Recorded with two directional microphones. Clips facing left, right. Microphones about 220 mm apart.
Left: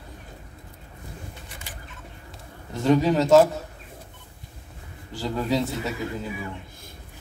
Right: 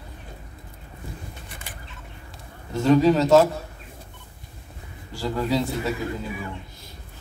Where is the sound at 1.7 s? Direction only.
55° right (ahead or behind).